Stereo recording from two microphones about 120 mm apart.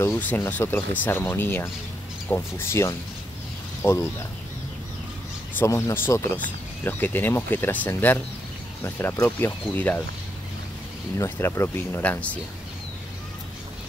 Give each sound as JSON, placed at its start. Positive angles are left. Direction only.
{"t": 0.0, "sound": "speech", "side_deg": 15}
{"t": 5.7, "sound": "speech", "side_deg": 25}
{"t": 11.1, "sound": "speech", "side_deg": 20}